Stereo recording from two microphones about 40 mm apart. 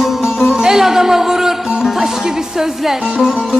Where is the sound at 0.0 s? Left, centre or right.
Centre.